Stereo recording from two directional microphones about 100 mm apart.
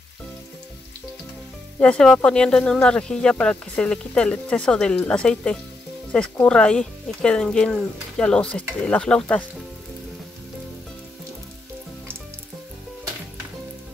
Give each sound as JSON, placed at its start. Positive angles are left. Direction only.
{"t": 1.8, "sound": "speech", "side_deg": 10}